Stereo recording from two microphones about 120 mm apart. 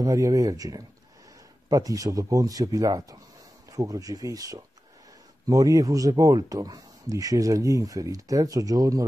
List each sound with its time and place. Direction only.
0.0 s speech: 30° right (ahead or behind)